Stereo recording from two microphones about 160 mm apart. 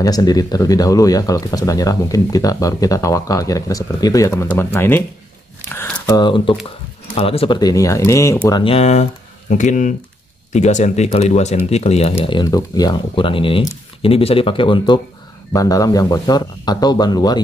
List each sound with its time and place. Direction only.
0.0 s speech: 25° left (ahead or behind)
5.7 s a sound: 10° left (ahead or behind)
6.1 s speech: 30° left (ahead or behind)
8.6 s speech: 40° left (ahead or behind)
9.5 s speech: 50° left (ahead or behind)
12.3 s speech: 25° left (ahead or behind)
15.5 s speech: 20° left (ahead or behind)